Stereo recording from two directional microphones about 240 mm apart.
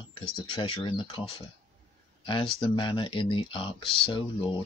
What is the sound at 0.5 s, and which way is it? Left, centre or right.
Speech, left.